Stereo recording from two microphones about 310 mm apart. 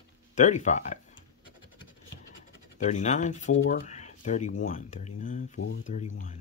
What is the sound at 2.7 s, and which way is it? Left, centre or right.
Speech, left.